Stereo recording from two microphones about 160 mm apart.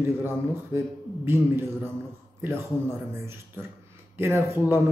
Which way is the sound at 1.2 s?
15° right (ahead or behind).